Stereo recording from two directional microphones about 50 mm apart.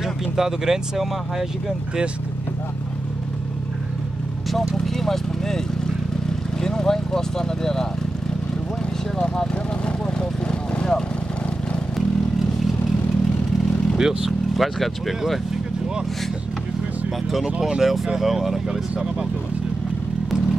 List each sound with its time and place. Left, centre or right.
0.0 s speech: centre
4.7 s a sound: centre
6.6 s speech: centre
10.1 s vehicle: centre
13.9 s speech: centre
17.6 s speech: centre